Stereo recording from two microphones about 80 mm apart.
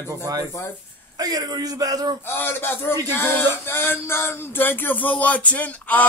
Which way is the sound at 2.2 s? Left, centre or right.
Left.